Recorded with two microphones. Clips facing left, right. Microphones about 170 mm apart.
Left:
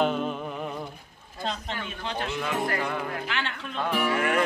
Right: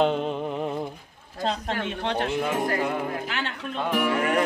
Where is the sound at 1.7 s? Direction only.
65° right (ahead or behind).